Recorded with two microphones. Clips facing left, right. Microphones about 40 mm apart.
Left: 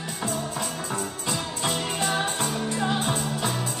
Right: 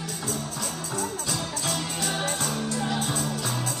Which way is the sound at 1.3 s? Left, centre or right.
Left.